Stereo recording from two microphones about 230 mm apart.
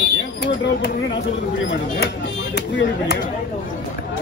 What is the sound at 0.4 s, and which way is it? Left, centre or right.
Speech, left.